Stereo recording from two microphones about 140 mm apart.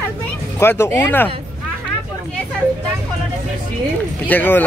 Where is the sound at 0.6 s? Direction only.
15° left (ahead or behind).